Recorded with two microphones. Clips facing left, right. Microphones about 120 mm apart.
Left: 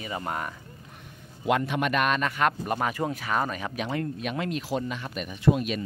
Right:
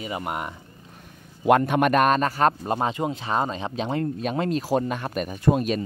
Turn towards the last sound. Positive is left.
turn(degrees=-40)  # may be behind; listen again after turning